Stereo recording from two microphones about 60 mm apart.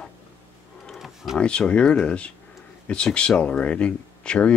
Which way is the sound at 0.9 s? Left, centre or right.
Centre.